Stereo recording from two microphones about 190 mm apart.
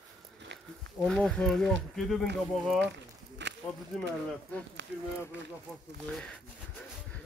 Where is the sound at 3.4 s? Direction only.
65° right (ahead or behind).